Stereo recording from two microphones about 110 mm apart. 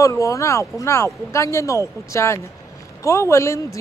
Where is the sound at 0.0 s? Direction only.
30° left (ahead or behind).